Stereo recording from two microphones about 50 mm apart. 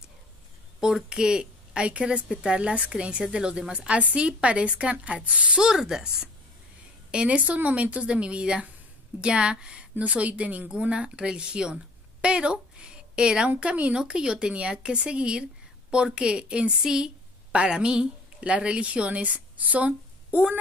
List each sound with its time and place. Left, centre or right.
0.7 s a woman's voice: centre
7.1 s a woman's voice: right